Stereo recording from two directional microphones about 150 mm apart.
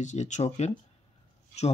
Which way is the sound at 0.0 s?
50° left (ahead or behind).